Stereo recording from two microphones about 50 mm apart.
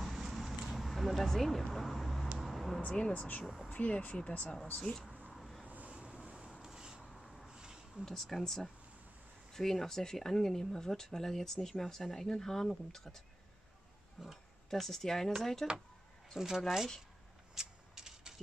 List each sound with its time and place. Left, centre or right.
0.0 s a sound: centre
2.3 s vehicle: centre
3.1 s speech: left; by 5.0 s centre
5.3 s vehicle: centre
5.7 s vehicle: right
6.6 s a sound: centre
7.1 s rub: centre
7.4 s a sound: centre
8.0 s speech: centre
14.2 s speech: centre
16.3 s speech: centre
17.6 s a sound: centre